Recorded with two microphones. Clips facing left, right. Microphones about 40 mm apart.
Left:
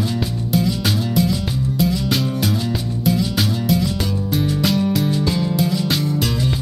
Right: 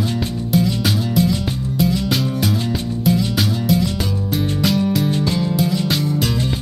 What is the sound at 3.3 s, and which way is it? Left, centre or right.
Music, centre.